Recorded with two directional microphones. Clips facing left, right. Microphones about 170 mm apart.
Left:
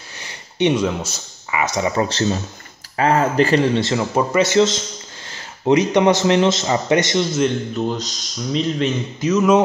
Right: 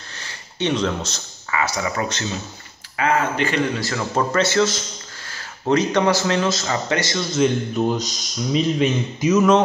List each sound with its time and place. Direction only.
0.2 s speech: 15° left (ahead or behind)
7.7 s speech: 10° right (ahead or behind)